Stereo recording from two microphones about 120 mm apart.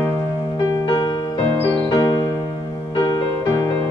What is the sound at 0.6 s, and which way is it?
Music, 30° left (ahead or behind).